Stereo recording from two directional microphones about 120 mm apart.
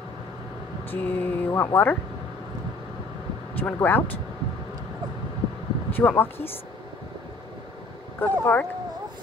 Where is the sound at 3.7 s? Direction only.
15° left (ahead or behind).